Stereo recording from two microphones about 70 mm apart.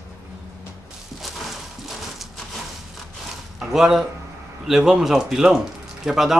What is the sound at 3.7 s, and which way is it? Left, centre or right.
Speech, centre.